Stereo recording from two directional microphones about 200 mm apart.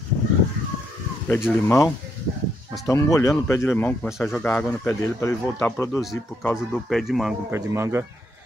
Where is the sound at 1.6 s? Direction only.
15° left (ahead or behind).